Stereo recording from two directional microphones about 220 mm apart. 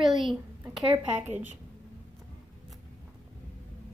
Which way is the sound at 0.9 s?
10° right (ahead or behind).